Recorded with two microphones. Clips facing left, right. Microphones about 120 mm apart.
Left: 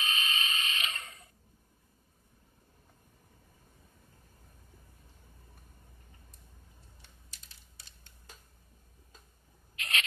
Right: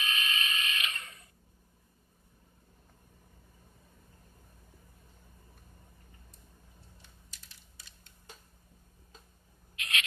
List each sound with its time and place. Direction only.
0.0 s mechanisms: 30° left (ahead or behind)
9.8 s rodents: 35° left (ahead or behind)